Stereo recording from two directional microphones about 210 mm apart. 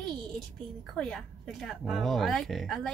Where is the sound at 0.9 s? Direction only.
5° left (ahead or behind).